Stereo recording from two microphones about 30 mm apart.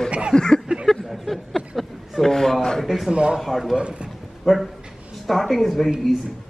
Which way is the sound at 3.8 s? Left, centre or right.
Right.